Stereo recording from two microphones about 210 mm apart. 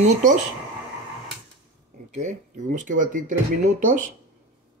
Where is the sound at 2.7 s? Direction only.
40° right (ahead or behind).